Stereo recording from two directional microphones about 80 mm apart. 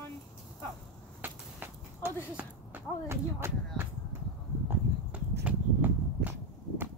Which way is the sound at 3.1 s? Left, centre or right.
Right.